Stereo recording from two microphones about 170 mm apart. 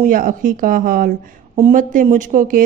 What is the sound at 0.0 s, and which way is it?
Speech, 55° right (ahead or behind).